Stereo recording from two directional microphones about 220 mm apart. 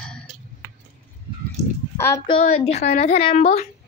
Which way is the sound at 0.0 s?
5° left (ahead or behind).